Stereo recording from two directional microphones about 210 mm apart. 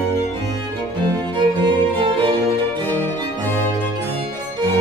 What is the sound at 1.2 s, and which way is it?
Music, 20° right (ahead or behind).